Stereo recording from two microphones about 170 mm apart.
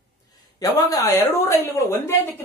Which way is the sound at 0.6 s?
20° left (ahead or behind).